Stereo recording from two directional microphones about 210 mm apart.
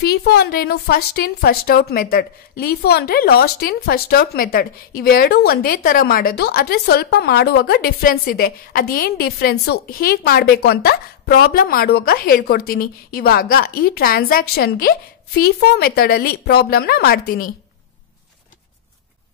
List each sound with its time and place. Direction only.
0.0 s a woman's voice: 50° left (ahead or behind)